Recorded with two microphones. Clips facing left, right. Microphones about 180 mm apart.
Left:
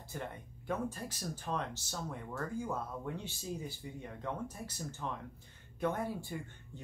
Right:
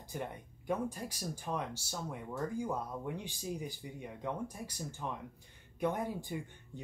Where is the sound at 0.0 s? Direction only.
15° right (ahead or behind).